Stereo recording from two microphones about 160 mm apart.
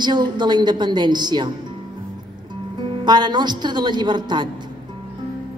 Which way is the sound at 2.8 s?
25° right (ahead or behind).